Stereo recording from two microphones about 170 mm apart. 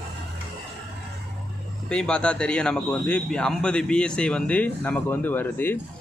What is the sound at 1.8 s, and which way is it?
A man's voice, 5° left (ahead or behind).